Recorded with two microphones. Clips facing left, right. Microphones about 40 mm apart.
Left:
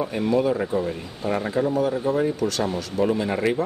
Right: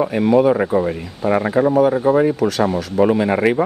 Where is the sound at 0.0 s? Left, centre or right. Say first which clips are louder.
Right 8 dB; right.